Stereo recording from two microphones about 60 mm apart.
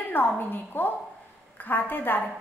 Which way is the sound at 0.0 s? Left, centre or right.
Left.